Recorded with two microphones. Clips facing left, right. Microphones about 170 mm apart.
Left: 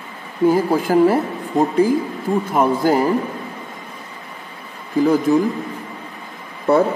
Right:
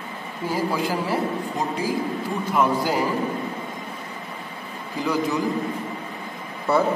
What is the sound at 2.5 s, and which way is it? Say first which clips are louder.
Speech: left 4 dB; 50° left (ahead or behind).